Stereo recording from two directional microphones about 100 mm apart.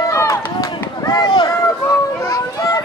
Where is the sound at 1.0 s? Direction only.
45° left (ahead or behind).